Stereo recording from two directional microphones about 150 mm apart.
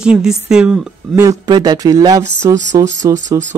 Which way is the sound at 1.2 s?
25° right (ahead or behind).